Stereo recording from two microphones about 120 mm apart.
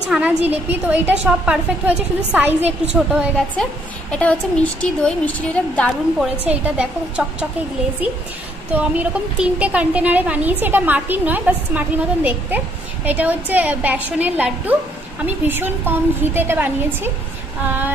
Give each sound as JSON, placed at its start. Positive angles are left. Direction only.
{"t": 0.1, "sound": "a woman's voice", "side_deg": -10}
{"t": 4.1, "sound": "a woman's voice", "side_deg": 10}
{"t": 6.4, "sound": "a woman's voice", "side_deg": -10}
{"t": 8.7, "sound": "a woman's voice", "side_deg": -10}